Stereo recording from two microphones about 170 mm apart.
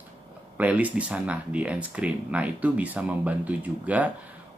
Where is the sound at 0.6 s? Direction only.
10° right (ahead or behind).